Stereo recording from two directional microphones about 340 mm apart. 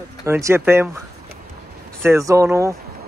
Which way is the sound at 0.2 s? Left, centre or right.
Centre.